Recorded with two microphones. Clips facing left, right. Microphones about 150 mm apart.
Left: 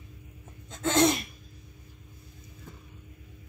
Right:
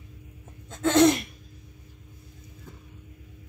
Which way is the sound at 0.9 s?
65° right (ahead or behind).